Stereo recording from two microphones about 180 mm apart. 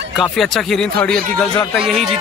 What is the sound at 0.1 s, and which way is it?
Speech, centre (ahead or behind).